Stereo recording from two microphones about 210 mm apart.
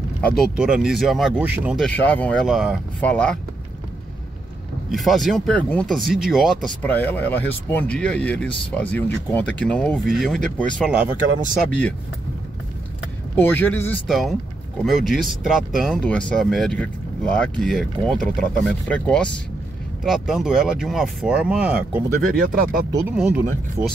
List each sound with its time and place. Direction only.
0.2 s speech: centre (ahead or behind)
1.9 s speech: 5° left (ahead or behind)
4.9 s speech: centre (ahead or behind)
13.4 s speech: 10° left (ahead or behind)
22.3 s speech: 40° right (ahead or behind)
23.0 s speech: 5° right (ahead or behind)